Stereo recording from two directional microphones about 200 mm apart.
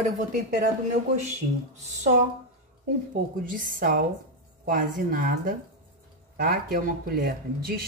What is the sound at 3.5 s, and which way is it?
Speech, 45° right (ahead or behind).